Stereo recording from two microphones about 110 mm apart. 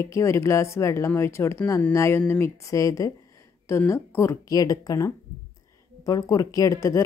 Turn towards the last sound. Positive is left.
turn(degrees=30)  # may be behind; listen again after turning